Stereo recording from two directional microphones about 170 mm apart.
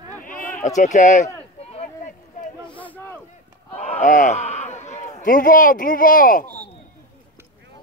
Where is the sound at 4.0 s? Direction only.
45° left (ahead or behind).